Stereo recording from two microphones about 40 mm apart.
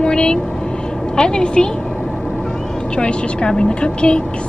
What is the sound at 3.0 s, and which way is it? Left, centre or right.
Speech, left.